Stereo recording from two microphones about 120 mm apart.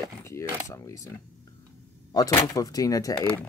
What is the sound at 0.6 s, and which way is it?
Speech, 25° left (ahead or behind).